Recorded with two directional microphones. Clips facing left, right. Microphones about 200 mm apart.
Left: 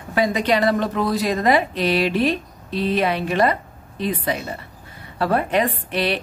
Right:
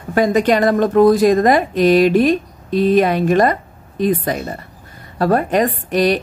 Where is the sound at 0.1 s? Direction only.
50° right (ahead or behind).